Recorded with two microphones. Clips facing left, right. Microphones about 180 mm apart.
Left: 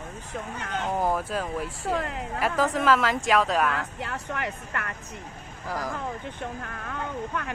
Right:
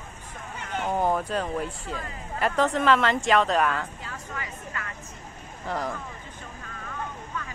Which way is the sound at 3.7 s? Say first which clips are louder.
Left 2 dB; 70° left (ahead or behind).